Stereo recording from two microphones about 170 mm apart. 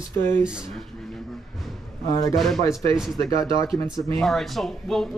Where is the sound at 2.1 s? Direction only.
20° left (ahead or behind).